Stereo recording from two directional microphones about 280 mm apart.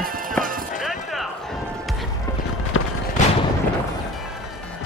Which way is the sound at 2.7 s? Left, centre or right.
Left.